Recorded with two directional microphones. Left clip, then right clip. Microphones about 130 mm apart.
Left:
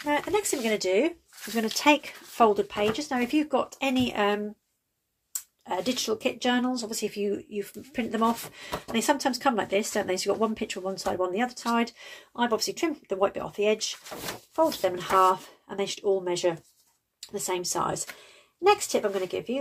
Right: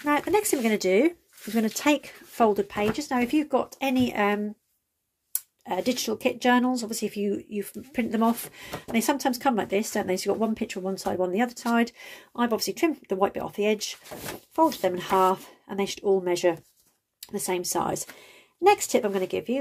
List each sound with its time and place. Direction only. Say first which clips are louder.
0.1 s speech: right 3 dB; 90° right
1.5 s speech: left 2 dB; 35° right (ahead or behind)
5.7 s speech: right 1 dB; 65° right (ahead or behind)